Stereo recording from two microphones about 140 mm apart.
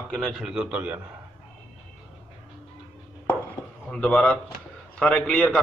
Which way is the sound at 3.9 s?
5° left (ahead or behind).